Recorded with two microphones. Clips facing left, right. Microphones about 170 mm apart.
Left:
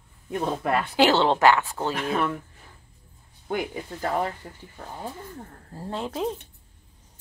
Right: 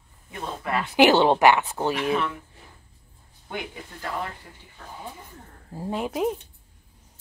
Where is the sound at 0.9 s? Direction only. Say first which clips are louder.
Right 4 dB; 15° right (ahead or behind).